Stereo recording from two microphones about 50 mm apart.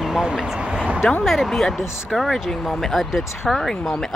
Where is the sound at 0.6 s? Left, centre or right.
Right.